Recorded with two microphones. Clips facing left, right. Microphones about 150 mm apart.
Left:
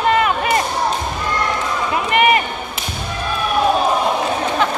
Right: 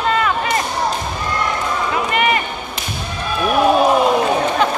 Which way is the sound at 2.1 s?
20° left (ahead or behind).